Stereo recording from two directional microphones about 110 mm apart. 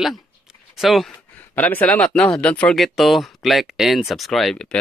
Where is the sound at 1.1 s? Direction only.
15° left (ahead or behind).